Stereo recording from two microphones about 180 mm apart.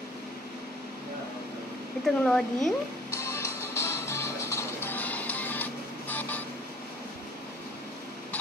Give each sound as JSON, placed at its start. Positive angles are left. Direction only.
{"t": 2.0, "sound": "speech", "side_deg": 0}
{"t": 3.2, "sound": "music", "side_deg": 15}